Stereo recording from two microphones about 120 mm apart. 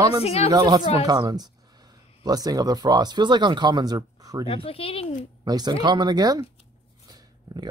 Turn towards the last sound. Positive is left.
turn(degrees=-30)  # may be behind; listen again after turning